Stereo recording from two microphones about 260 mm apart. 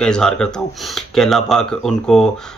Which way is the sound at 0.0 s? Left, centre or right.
Centre.